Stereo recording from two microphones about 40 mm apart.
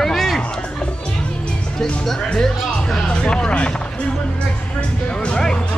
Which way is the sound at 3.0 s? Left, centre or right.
Left.